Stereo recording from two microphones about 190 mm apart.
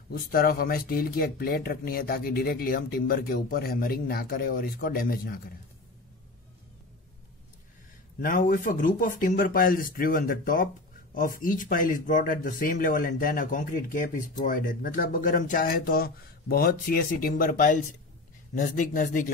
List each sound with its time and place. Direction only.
0.1 s speech: 50° left (ahead or behind)
8.2 s speech: 45° left (ahead or behind)